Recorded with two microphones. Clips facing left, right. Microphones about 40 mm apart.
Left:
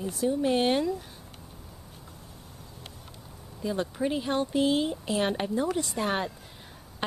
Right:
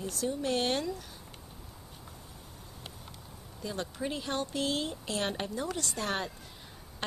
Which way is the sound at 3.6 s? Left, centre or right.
Centre.